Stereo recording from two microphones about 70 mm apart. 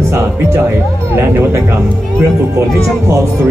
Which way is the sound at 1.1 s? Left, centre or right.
Right.